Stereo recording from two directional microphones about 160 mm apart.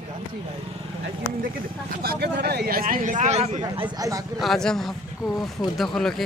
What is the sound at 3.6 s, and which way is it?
Speech, 25° right (ahead or behind).